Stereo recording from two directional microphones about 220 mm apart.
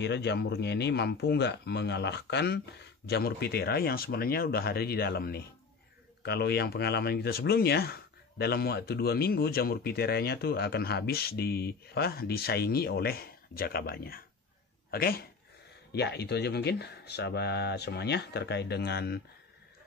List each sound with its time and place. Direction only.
0.0 s speech: 50° left (ahead or behind)